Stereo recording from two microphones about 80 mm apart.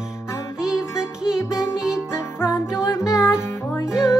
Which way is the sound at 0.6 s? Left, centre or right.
Centre.